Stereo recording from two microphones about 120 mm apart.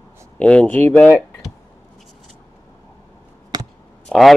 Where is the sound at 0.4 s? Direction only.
10° left (ahead or behind).